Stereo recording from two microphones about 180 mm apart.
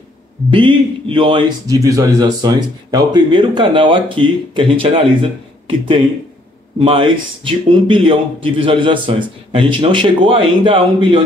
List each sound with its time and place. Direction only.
0.5 s a man's voice: 30° right (ahead or behind)
6.8 s a man's voice: 30° right (ahead or behind)